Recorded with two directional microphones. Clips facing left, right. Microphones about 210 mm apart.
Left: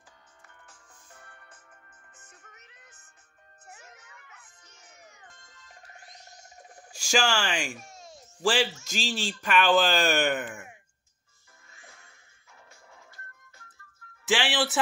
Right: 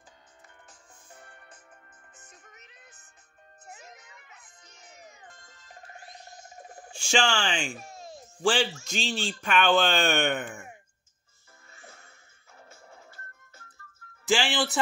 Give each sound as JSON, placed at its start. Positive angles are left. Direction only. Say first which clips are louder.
{"t": 0.7, "sound": "music", "louder": "right 2 dB", "side_deg": -20}
{"t": 7.2, "sound": "speech", "louder": "even", "side_deg": 5}
{"t": 11.7, "sound": "music", "louder": "right 4 dB", "side_deg": -40}
{"t": 14.2, "sound": "speech", "louder": "right 1 dB", "side_deg": 0}